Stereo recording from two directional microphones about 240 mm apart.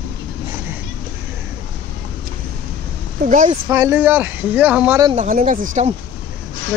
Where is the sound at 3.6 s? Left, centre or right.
Centre.